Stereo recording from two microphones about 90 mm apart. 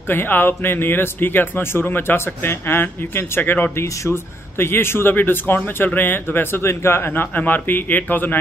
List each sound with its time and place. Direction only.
0.1 s a man's voice: 20° left (ahead or behind)
3.7 s a man's voice: 30° left (ahead or behind)